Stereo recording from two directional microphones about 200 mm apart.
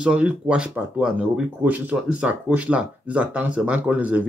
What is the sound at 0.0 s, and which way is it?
Speech, 5° right (ahead or behind).